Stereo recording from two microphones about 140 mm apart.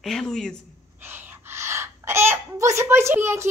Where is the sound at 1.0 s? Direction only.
15° right (ahead or behind).